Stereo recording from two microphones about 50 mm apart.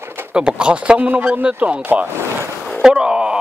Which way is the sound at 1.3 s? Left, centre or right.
Right.